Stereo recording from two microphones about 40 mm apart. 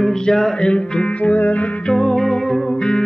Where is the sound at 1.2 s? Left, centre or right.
Left.